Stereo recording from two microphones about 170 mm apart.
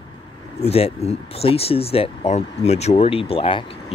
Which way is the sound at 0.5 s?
35° left (ahead or behind).